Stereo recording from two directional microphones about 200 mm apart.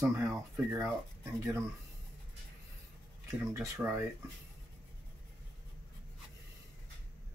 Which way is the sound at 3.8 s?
5° right (ahead or behind).